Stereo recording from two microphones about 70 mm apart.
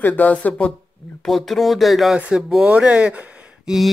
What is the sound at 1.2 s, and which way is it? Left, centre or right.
Speech, centre.